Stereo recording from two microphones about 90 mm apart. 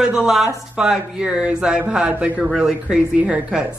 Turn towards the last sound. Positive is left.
turn(degrees=-15)  # may be behind; listen again after turning